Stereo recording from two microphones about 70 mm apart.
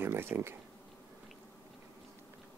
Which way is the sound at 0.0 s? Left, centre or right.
Right.